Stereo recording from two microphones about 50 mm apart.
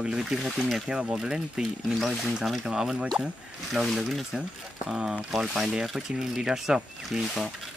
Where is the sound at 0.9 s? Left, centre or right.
Right.